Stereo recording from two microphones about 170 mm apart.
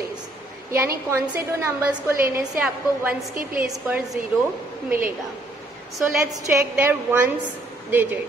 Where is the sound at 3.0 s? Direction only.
Centre (ahead or behind).